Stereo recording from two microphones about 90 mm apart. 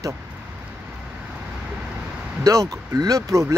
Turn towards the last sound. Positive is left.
turn(degrees=-35)  # may be behind; listen again after turning